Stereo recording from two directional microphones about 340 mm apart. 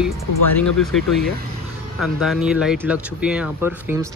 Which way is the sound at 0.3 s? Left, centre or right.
Left.